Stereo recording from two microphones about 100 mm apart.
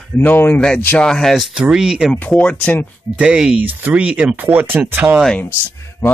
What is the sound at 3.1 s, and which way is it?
Speech, 10° right (ahead or behind).